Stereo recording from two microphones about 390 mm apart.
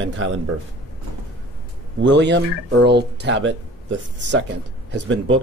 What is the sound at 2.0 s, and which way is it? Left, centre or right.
Speech, right.